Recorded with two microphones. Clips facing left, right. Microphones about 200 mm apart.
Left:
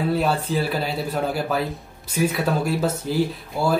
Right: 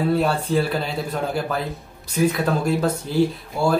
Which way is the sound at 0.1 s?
Centre (ahead or behind).